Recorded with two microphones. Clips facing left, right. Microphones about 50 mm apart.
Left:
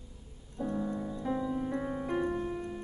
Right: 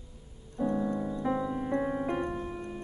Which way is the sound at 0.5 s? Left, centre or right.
Centre.